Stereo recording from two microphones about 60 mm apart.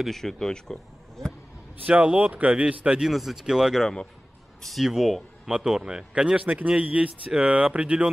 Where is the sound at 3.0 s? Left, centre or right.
Centre.